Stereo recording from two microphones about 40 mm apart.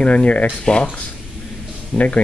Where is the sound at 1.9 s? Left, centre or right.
Centre.